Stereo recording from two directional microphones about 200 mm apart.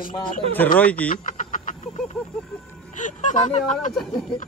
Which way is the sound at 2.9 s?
40° left (ahead or behind).